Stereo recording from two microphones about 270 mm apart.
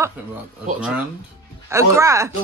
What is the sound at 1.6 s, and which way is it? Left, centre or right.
Speech, centre.